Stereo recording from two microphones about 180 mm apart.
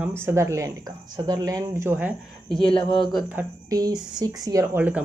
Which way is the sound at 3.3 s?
20° right (ahead or behind).